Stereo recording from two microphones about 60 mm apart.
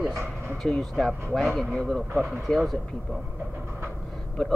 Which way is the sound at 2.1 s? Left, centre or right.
Centre.